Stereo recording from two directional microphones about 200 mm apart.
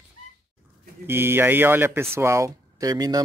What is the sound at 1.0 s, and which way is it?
Speech, 10° right (ahead or behind).